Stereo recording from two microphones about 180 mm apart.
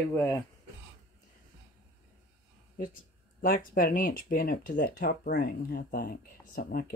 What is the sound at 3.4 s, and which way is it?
Speech, 50° left (ahead or behind).